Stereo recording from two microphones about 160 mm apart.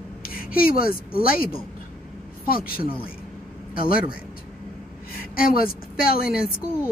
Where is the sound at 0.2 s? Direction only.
65° left (ahead or behind).